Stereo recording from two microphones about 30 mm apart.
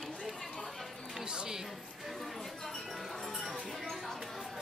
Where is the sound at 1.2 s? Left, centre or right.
Right.